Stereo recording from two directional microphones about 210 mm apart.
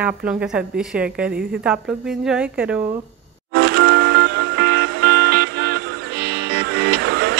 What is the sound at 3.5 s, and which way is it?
Music, 50° right (ahead or behind).